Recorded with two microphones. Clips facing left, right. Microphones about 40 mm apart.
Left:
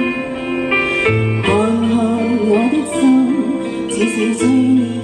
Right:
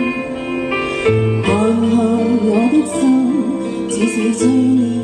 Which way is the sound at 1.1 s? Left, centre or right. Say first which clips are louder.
Right 1 dB; left.